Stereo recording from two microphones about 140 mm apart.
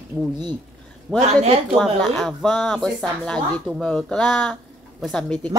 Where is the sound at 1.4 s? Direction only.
45° right (ahead or behind).